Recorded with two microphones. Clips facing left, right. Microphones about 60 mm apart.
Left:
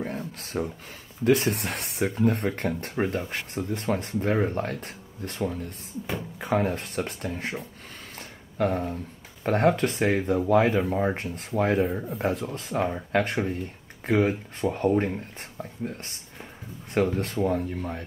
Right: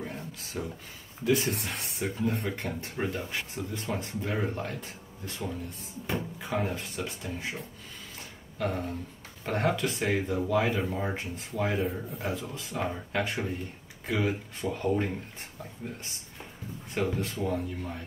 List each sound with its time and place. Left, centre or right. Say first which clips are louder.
0.0 s a sound: left 6 dB; left
1.2 s speech: left 5 dB; left
8.5 s speech: left 6 dB; left
11.1 s speech: left 6 dB; left
16.9 s speech: left 6 dB; left